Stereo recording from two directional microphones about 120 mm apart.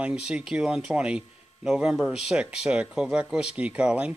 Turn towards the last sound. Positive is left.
turn(degrees=-10)  # may be behind; listen again after turning